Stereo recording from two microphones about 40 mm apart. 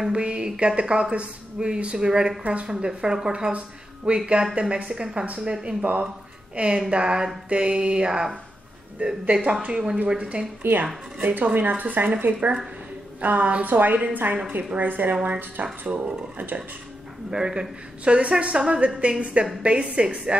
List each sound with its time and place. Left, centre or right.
0.1 s a man's voice: right
9.3 s a man's voice: right
10.6 s speech: right
13.7 s speech: right
15.9 s speech: right
17.3 s a man's voice: centre